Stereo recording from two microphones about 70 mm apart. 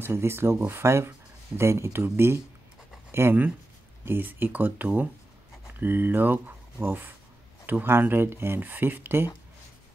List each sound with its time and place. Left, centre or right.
0.0 s speech: right